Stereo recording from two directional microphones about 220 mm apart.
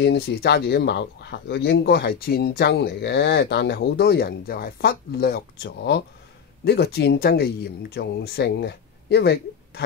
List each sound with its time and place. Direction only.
0.0 s speech: 50° left (ahead or behind)